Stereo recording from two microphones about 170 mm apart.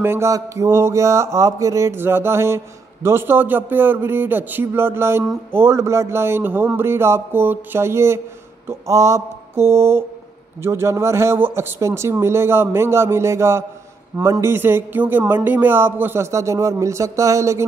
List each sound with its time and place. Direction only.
0.0 s mantra: 15° right (ahead or behind)